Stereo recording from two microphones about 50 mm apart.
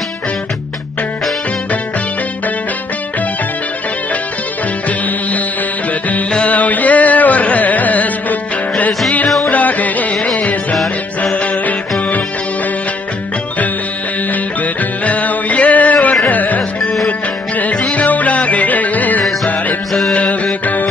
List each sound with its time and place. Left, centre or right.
4.8 s music: left
14.3 s music: left
20.6 s music: left